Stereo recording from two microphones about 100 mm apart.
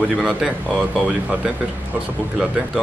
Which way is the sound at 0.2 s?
10° right (ahead or behind).